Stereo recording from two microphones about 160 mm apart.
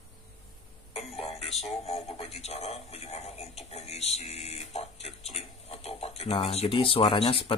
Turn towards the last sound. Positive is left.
turn(degrees=35)  # may be behind; listen again after turning